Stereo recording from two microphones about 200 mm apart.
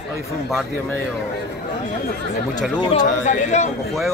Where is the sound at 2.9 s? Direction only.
35° left (ahead or behind).